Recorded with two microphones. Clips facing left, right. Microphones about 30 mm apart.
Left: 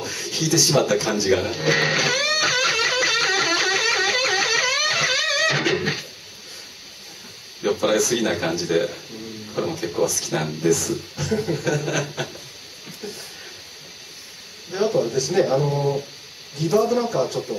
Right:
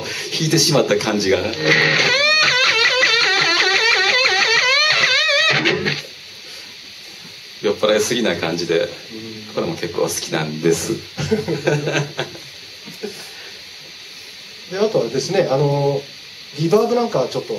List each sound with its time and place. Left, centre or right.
0.0 s a sound: right
0.8 s speech: right
1.3 s music: right
7.6 s speech: right
9.5 s a man's voice: right
13.0 s a sound: right
14.7 s a sound: right
15.1 s speech: right
15.4 s a man's voice: right